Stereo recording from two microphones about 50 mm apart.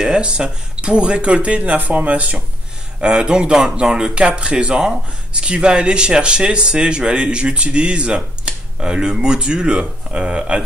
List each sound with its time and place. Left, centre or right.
0.0 s speech: centre
3.0 s speech: centre